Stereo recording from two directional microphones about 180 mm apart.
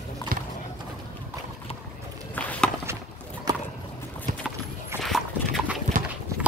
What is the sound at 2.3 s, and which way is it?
Walk, 10° left (ahead or behind).